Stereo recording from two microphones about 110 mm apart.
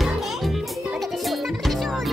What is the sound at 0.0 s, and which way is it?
Music, centre (ahead or behind).